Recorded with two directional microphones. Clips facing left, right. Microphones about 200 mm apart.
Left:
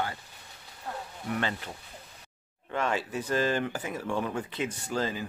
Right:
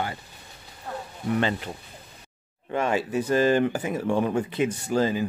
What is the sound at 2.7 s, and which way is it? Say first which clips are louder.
Speech: right 6 dB; 15° right (ahead or behind).